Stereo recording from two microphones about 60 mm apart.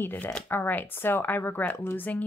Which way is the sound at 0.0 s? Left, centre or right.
Left.